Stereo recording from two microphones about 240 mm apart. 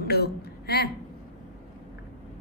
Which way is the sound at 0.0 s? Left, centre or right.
Left.